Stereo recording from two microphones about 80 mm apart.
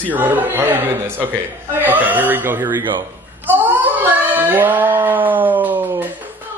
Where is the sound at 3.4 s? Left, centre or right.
Right.